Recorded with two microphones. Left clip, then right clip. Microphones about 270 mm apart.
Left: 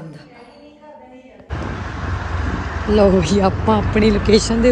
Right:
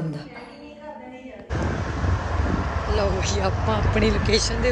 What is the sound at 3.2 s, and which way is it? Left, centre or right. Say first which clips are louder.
Speech: left 8 dB; centre.